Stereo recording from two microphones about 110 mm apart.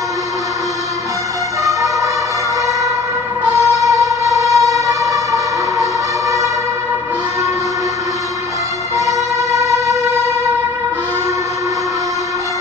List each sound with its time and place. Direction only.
1.6 s emergency vehicle: 30° right (ahead or behind)
3.5 s music: 30° right (ahead or behind)
8.9 s vehicle: 30° right (ahead or behind)